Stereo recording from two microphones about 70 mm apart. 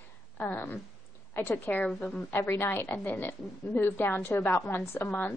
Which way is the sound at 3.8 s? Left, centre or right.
Left.